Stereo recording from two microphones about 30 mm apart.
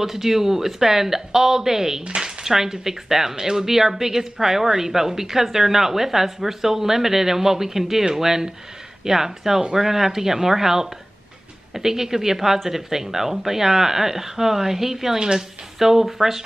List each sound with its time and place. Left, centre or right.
0.0 s speech: centre
2.0 s speech: right
2.4 s speech: centre